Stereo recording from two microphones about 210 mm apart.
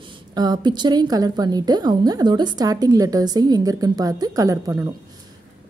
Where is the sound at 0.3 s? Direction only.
20° right (ahead or behind).